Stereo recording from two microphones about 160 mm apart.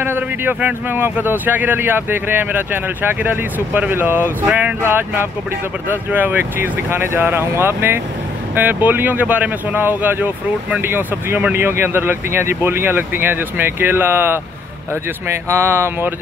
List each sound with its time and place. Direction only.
0.0 s speech: 15° right (ahead or behind)
15.4 s speech: 15° right (ahead or behind)